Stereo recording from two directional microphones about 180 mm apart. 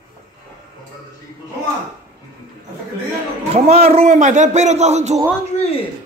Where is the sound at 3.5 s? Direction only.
35° right (ahead or behind).